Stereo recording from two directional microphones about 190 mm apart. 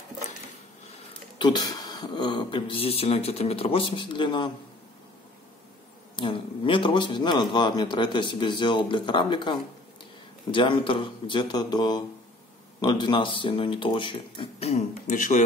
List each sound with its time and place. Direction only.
1.4 s a man's voice: 20° left (ahead or behind)
6.1 s a man's voice: 25° left (ahead or behind); by 15.4 s 40° left (ahead or behind)